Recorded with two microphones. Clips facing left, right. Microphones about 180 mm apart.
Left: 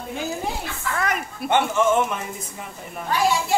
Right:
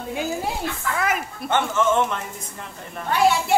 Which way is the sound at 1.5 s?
15° left (ahead or behind).